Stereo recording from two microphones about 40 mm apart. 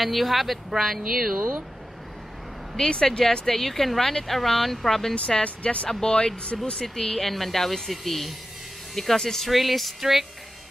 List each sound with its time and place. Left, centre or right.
0.0 s speech: centre
2.7 s speech: centre
5.4 s speech: left; by 9.5 s centre
9.5 s speech: centre